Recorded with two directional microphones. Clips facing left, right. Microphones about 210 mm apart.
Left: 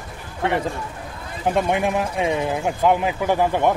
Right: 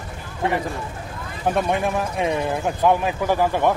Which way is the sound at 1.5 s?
15° left (ahead or behind).